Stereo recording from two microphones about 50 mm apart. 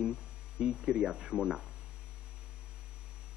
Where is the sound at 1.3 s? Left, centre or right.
Centre.